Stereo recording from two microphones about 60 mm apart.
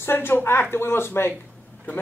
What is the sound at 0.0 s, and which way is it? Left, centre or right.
A man's voice, left.